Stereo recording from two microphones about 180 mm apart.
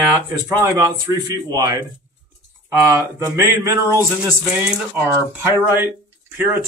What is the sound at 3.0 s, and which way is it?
Speech, 15° right (ahead or behind).